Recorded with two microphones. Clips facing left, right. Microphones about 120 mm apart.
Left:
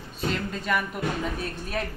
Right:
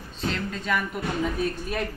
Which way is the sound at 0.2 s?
5° left (ahead or behind).